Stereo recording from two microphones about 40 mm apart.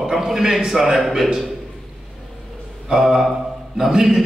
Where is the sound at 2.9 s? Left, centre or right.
Centre.